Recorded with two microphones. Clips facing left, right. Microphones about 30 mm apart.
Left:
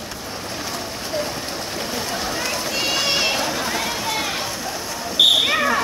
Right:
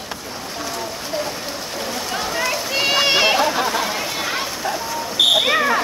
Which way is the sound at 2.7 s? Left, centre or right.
Right.